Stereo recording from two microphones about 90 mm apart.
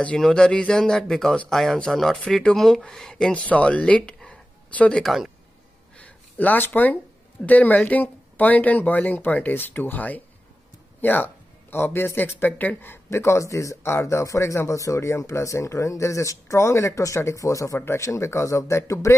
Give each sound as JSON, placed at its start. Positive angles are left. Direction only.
{"t": 0.0, "sound": "speech", "side_deg": 10}
{"t": 5.0, "sound": "speech", "side_deg": 0}
{"t": 5.9, "sound": "a sound", "side_deg": 15}
{"t": 7.4, "sound": "a man's voice", "side_deg": 20}